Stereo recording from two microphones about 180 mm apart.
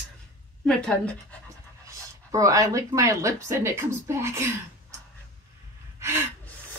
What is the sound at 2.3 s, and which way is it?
Speech, 20° right (ahead or behind).